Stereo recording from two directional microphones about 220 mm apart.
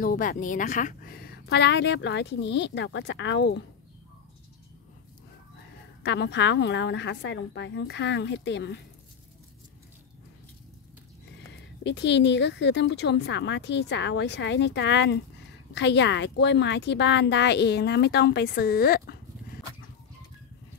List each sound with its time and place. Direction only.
0.0 s a woman's voice: 40° left (ahead or behind)
6.0 s a woman's voice: 50° left (ahead or behind)
11.8 s a woman's voice: 50° left (ahead or behind)